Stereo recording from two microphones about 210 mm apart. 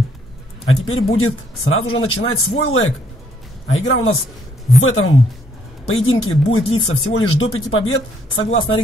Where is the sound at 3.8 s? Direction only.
90° left.